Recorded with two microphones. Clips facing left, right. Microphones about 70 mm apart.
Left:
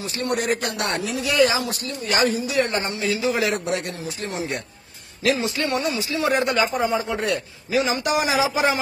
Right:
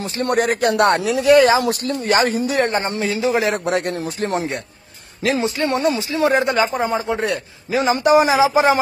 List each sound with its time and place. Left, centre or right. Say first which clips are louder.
0.0 s speech: right 6 dB; right
1.2 s speech: right 8 dB; right
3.5 s speech: right 5 dB; right
5.2 s a man's voice: right 3 dB; right